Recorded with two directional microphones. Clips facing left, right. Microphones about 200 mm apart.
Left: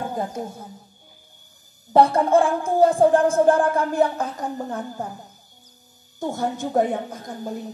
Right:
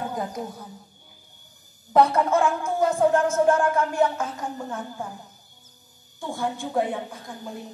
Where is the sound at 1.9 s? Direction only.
30° left (ahead or behind).